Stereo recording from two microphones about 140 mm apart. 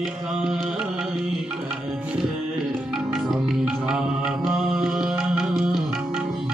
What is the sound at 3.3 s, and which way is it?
Music, 5° right (ahead or behind).